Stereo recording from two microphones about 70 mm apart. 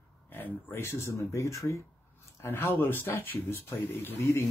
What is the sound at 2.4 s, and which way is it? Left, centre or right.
Speech, left.